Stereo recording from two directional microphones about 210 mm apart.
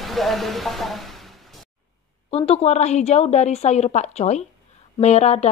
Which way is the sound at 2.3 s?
30° left (ahead or behind).